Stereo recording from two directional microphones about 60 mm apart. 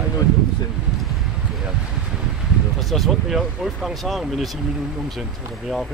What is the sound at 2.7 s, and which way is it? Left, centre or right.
Speech, centre.